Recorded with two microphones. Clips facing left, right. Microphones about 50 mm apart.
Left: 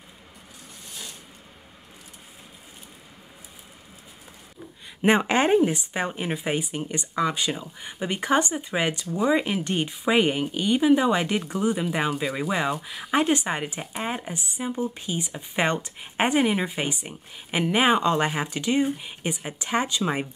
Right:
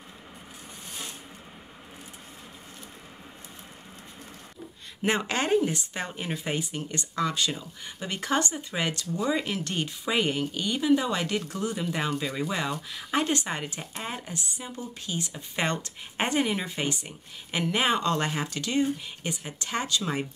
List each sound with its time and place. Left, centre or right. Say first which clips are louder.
5.0 s speech: left 7 dB; left